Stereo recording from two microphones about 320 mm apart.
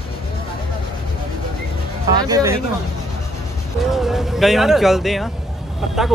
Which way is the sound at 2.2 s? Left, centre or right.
Centre.